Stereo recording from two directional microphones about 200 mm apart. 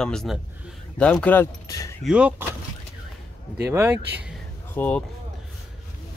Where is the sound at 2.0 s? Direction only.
5° right (ahead or behind).